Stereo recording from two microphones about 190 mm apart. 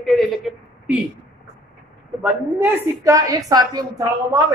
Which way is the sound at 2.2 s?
10° right (ahead or behind).